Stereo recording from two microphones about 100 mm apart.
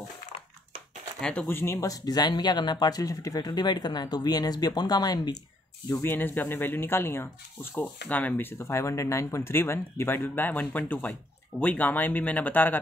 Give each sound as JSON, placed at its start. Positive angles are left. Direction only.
{"t": 1.2, "sound": "speech", "side_deg": 10}
{"t": 1.5, "sound": "speech", "side_deg": 25}
{"t": 5.9, "sound": "speech", "side_deg": 25}
{"t": 8.5, "sound": "speech", "side_deg": 30}